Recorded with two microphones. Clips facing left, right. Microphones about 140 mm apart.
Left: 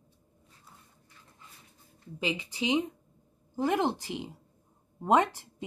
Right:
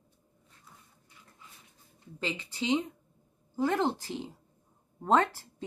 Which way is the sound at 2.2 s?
15° left (ahead or behind).